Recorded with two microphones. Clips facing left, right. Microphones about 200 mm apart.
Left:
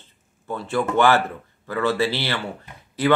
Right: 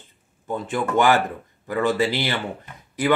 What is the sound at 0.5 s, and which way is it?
Speech, 15° right (ahead or behind).